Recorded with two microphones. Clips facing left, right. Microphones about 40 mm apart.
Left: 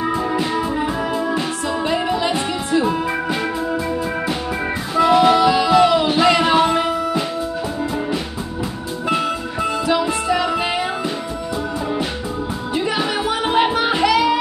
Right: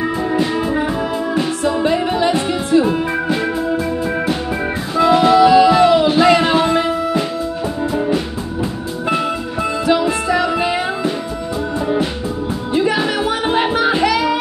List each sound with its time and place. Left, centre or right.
0.6 s music: right
2.0 s music: right
2.8 s music: right
4.9 s music: right
9.6 s music: right
12.7 s music: right